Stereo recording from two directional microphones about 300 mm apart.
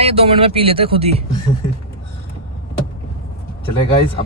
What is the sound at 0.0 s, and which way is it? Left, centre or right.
Speech, centre.